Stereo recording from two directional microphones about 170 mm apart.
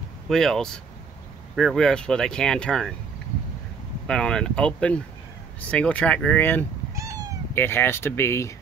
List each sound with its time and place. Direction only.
0.3 s speech: centre (ahead or behind)
4.1 s speech: 5° left (ahead or behind)
7.0 s cat: 20° right (ahead or behind)
7.5 s speech: 10° left (ahead or behind)